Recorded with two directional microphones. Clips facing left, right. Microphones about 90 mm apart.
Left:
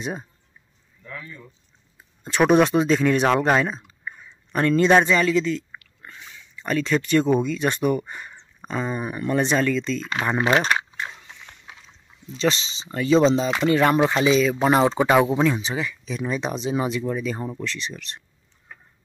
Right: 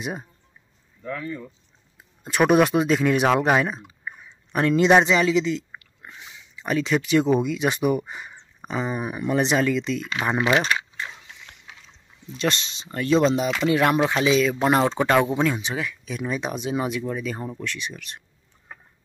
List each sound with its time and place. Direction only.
0.0 s speech: 5° right (ahead or behind)
1.0 s speech: 55° right (ahead or behind)
2.2 s speech: 5° right (ahead or behind)
10.4 s speech: 40° left (ahead or behind)
11.0 s a sound: 25° left (ahead or behind)
12.4 s speech: centre (ahead or behind)